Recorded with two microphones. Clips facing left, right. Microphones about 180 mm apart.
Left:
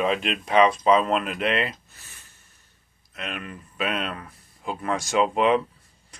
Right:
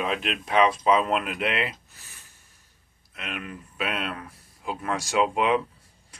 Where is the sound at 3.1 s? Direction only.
5° right (ahead or behind).